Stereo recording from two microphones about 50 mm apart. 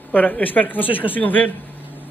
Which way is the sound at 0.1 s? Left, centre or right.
Left.